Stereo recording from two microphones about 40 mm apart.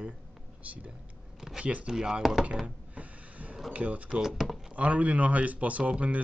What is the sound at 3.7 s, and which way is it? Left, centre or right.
Speech, right.